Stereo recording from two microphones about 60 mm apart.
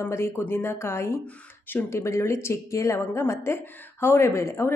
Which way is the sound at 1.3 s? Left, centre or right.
Left.